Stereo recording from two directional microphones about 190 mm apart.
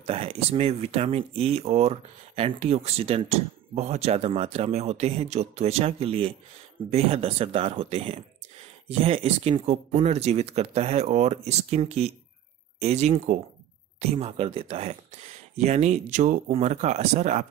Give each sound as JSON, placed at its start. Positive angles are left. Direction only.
{"t": 0.0, "sound": "speech", "side_deg": -30}